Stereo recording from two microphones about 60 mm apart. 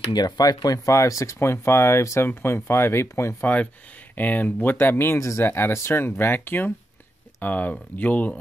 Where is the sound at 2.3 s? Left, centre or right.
Left.